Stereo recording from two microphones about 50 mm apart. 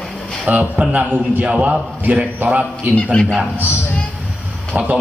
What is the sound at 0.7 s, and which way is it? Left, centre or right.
Speech, right.